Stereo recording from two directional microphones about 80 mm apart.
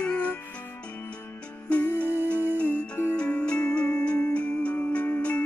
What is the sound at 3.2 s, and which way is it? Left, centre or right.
Music, centre.